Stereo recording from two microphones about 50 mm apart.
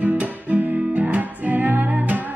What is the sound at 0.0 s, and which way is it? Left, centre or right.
Music, right.